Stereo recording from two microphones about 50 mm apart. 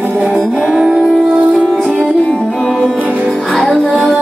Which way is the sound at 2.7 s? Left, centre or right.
Centre.